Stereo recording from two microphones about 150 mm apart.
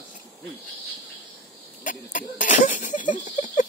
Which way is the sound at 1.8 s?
60° left (ahead or behind).